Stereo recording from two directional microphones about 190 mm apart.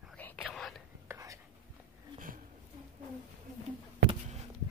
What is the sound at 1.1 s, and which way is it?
Whispering, 15° right (ahead or behind).